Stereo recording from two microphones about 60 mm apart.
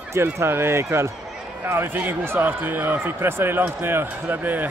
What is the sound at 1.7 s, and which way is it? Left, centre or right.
Speech, right.